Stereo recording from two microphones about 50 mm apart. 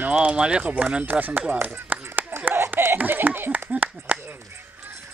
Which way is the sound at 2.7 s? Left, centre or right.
Right.